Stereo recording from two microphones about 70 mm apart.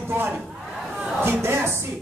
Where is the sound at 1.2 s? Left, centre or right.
Right.